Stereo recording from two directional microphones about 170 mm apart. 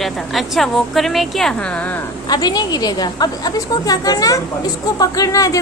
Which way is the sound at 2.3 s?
25° left (ahead or behind).